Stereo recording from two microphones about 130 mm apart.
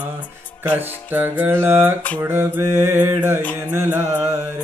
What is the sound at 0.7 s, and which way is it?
Music, 15° right (ahead or behind).